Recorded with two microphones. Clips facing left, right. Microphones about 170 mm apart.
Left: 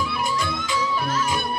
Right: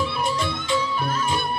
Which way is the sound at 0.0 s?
30° right (ahead or behind).